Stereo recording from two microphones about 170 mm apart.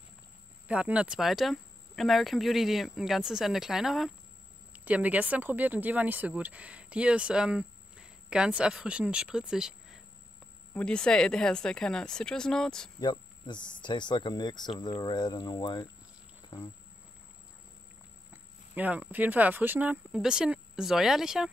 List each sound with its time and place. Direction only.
0.7 s speech: 5° right (ahead or behind)
10.7 s speech: 5° left (ahead or behind)
13.0 s speech: 25° left (ahead or behind)
18.3 s speech: 10° right (ahead or behind)